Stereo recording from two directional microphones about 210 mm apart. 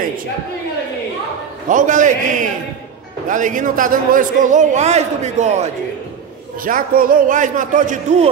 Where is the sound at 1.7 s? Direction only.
35° right (ahead or behind).